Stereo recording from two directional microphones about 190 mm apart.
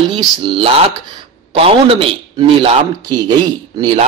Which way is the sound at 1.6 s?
30° right (ahead or behind).